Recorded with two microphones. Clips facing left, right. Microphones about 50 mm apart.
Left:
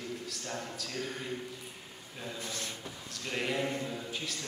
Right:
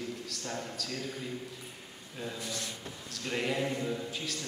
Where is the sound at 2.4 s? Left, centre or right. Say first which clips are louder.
Right 1 dB; left.